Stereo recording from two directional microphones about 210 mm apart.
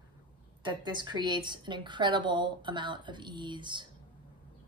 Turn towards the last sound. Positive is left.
turn(degrees=-20)  # may be behind; listen again after turning